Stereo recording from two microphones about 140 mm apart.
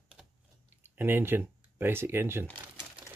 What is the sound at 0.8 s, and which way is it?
Speech, 15° right (ahead or behind).